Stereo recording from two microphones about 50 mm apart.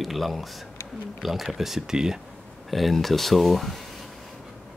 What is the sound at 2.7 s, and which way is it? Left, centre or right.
Speech, centre.